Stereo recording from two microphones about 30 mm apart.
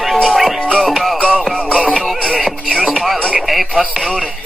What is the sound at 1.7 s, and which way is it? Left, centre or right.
Music, left.